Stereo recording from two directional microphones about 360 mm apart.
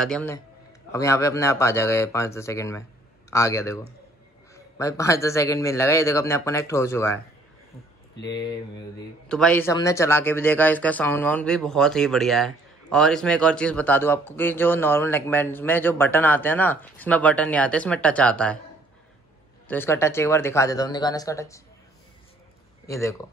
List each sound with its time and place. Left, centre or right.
0.0 s a man's voice: centre
8.2 s speech: left
9.3 s a man's voice: centre
19.7 s a man's voice: centre
22.8 s a man's voice: centre